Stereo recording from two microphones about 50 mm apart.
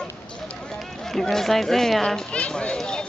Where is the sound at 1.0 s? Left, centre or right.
Centre.